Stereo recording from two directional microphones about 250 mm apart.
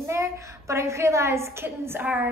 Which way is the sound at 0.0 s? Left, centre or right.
Centre.